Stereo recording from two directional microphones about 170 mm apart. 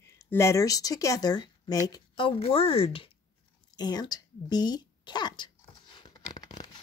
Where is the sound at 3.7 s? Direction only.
25° left (ahead or behind).